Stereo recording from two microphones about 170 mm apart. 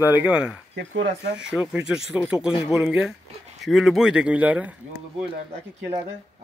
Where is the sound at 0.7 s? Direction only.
90° right.